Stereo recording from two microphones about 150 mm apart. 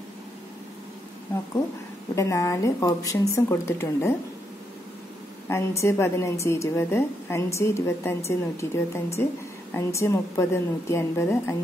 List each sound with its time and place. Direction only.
2.1 s speech: 20° left (ahead or behind)
5.5 s a woman's voice: 20° left (ahead or behind)